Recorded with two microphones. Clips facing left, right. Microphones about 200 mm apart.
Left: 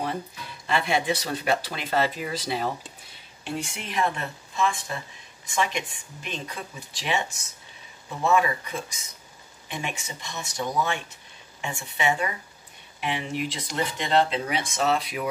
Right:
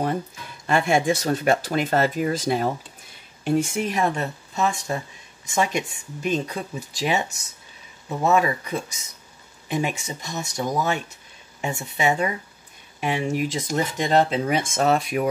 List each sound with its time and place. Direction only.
0.7 s speech: 45° right (ahead or behind)